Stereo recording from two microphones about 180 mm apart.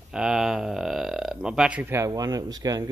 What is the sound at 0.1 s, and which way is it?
Speech, 5° right (ahead or behind).